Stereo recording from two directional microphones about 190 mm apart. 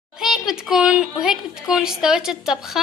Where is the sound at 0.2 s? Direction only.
Centre (ahead or behind).